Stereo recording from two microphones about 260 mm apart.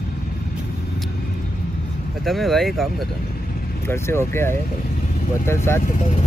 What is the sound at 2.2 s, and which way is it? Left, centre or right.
Speech, centre.